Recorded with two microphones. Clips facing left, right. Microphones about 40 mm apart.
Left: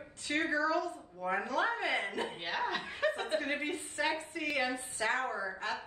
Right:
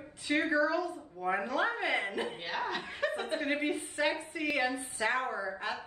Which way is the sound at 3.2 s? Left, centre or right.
Centre.